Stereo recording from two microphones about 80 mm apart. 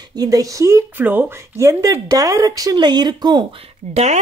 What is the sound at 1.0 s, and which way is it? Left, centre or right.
Speech, right.